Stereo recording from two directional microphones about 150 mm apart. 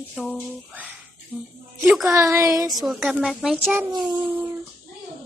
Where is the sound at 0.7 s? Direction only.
10° right (ahead or behind).